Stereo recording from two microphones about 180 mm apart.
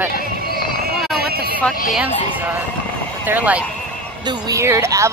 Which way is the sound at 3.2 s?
10° right (ahead or behind).